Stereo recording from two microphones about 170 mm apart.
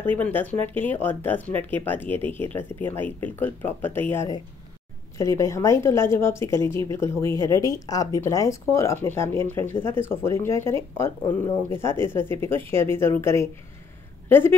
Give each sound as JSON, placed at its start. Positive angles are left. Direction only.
{"t": 0.2, "sound": "speech", "side_deg": 10}